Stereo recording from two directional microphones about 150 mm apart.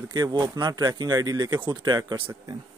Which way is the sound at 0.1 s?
25° right (ahead or behind).